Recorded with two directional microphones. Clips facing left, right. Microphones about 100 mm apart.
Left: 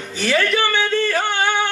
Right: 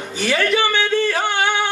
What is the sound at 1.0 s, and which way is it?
Yodeling, 15° right (ahead or behind).